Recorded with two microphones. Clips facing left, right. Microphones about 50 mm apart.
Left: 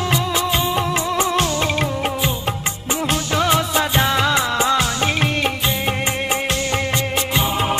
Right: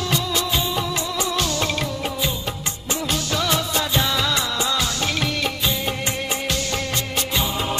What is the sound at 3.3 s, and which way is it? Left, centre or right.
Music, left.